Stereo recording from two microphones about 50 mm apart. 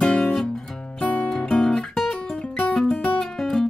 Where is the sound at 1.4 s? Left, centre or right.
Centre.